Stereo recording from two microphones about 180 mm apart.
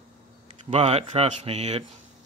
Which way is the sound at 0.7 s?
35° right (ahead or behind).